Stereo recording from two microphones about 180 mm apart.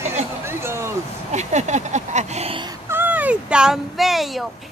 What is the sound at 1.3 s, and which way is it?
Speech, 40° right (ahead or behind).